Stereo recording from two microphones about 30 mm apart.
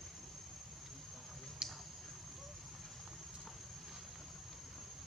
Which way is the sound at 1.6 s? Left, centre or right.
Right.